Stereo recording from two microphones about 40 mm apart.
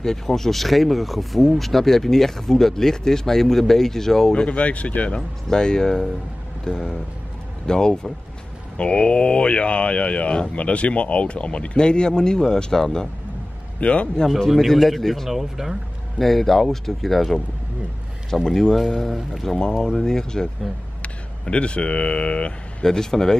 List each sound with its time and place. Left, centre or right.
0.0 s speech: centre
4.5 s speech: left
5.5 s speech: centre
13.7 s a man's voice: left
15.0 s speech: centre
15.2 s speech: centre
16.2 s speech: centre
18.5 s speech: centre
21.0 s speech: left
22.8 s speech: centre